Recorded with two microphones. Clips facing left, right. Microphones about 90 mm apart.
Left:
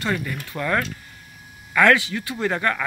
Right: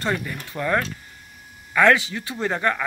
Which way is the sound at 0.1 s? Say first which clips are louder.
Left 1 dB; 15° right (ahead or behind).